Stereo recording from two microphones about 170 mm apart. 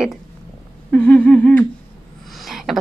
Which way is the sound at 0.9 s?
10° left (ahead or behind).